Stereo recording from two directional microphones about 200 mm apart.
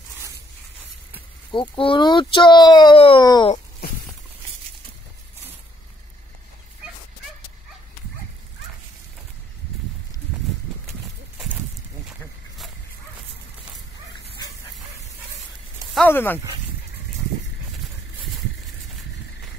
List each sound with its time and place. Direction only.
1.5 s speech: 25° left (ahead or behind)
10.9 s horse: centre (ahead or behind)
16.1 s speech: 10° left (ahead or behind)